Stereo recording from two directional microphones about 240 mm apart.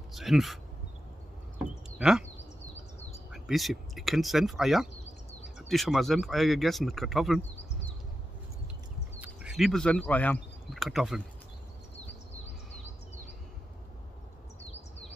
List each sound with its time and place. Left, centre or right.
0.1 s speech: centre
1.6 s a sound: centre
2.7 s bird: left
3.3 s speech: centre
9.2 s speech: centre